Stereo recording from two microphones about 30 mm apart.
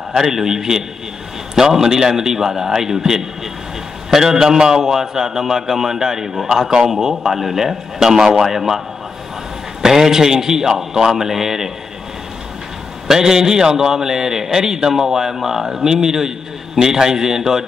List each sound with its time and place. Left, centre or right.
0.1 s a man's voice: centre
13.1 s a man's voice: centre